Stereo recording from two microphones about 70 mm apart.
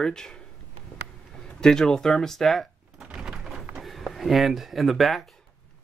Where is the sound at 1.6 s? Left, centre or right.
Centre.